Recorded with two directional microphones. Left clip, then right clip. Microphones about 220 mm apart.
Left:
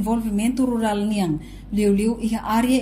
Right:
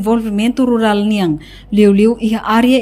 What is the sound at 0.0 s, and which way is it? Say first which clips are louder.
A woman's voice: right 8 dB; 40° right (ahead or behind).